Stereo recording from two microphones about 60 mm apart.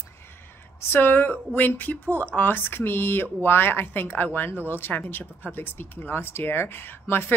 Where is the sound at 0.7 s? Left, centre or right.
Left.